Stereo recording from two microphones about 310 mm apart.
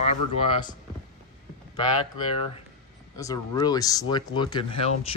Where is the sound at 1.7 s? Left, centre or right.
Centre.